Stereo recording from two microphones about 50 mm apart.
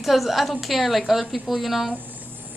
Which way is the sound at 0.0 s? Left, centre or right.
Centre.